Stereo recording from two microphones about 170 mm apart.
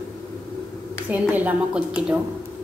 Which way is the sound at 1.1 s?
10° right (ahead or behind).